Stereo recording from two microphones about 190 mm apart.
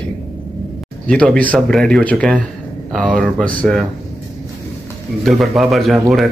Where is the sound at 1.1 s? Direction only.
5° left (ahead or behind).